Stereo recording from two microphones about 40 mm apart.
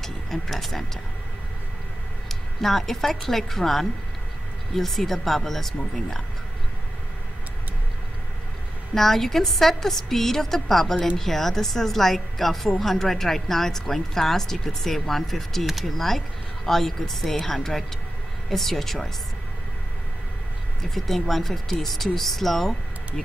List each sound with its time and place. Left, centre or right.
0.0 s speech: centre
2.2 s a woman's voice: centre
8.9 s a woman's voice: centre
18.5 s speech: centre
20.9 s speech: centre